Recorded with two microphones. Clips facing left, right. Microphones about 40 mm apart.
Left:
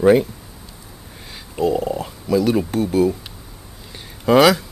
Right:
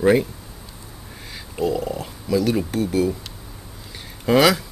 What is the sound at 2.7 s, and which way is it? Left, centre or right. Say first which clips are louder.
Speech: left 3 dB; left.